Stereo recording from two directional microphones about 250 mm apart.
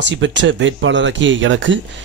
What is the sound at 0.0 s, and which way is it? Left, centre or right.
A man's voice, right.